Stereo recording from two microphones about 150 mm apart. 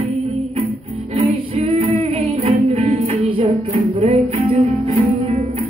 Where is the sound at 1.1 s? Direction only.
45° right (ahead or behind).